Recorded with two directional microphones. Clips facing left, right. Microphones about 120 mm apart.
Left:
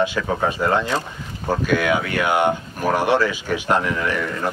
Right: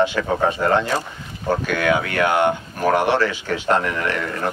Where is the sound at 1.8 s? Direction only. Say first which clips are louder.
Right 2 dB; 15° left (ahead or behind).